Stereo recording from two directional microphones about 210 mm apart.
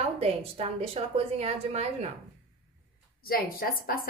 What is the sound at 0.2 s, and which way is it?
A woman's voice, 30° right (ahead or behind).